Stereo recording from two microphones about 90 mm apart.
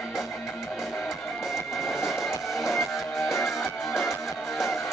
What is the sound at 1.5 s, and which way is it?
Music, 5° right (ahead or behind).